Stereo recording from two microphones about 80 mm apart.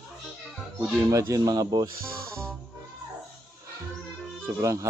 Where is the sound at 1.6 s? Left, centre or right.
Right.